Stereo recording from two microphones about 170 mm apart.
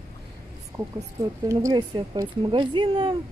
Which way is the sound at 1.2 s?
20° right (ahead or behind).